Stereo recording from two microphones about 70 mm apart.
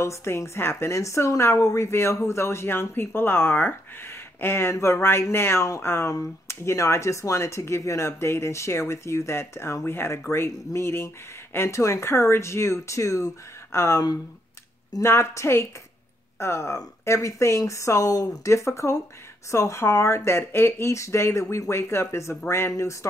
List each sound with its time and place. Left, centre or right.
0.0 s a woman's voice: left
15.0 s a woman's voice: left